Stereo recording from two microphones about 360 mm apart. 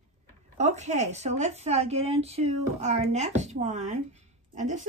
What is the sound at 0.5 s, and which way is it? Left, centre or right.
A woman's voice, centre.